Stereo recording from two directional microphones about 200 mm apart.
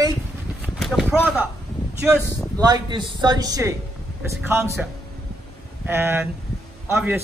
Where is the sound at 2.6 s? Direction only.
20° right (ahead or behind).